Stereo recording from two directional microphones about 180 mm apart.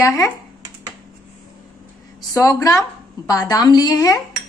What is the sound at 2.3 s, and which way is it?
A woman's voice, 20° left (ahead or behind).